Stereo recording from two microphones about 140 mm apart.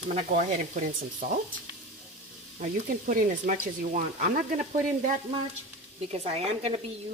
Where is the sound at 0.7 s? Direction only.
65° right (ahead or behind).